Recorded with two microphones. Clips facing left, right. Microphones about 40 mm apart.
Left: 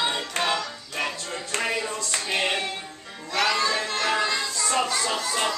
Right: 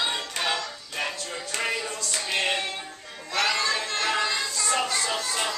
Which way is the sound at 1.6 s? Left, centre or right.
Centre.